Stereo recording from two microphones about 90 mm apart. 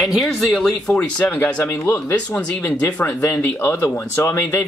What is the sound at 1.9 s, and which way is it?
Speech, 20° left (ahead or behind).